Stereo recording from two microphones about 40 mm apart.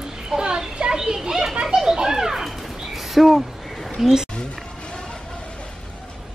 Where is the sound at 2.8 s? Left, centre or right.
Centre.